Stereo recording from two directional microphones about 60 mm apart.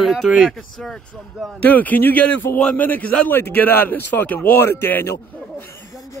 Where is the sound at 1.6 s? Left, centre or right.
Left.